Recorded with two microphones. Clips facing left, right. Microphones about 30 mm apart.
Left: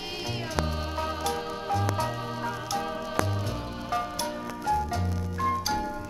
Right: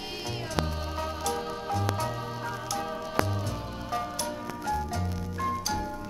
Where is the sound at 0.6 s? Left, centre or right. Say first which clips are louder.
Left 2 dB; centre.